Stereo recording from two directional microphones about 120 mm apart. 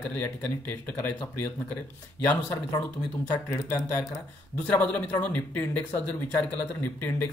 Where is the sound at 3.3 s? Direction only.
20° left (ahead or behind).